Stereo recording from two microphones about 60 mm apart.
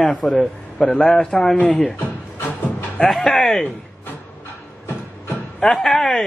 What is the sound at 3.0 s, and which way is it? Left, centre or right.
Speech, centre.